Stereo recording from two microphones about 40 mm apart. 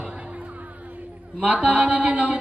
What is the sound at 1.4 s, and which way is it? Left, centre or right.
A man's voice, right.